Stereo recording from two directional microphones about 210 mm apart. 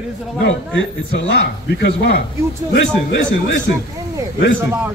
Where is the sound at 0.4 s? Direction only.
60° left (ahead or behind).